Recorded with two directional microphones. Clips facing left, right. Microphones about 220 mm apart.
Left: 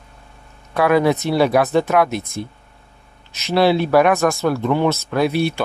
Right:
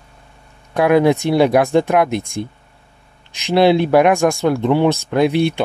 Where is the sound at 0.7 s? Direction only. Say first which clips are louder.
Right 3 dB; 15° right (ahead or behind).